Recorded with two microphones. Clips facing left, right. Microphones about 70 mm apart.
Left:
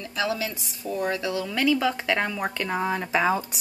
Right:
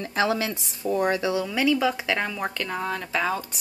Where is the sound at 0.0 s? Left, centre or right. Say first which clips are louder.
Right 3 dB; right.